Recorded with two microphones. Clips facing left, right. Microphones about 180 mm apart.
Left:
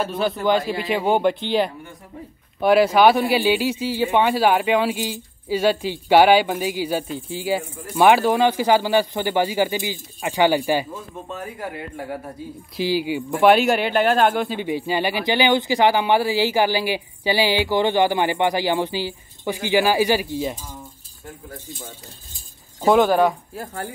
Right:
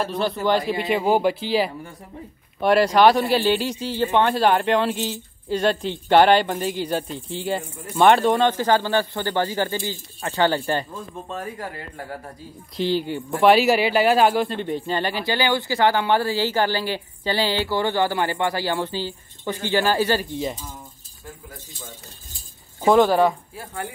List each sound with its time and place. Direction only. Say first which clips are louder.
0.0 s speech: left 1 dB; centre (ahead or behind)
22.8 s speech: even; centre (ahead or behind)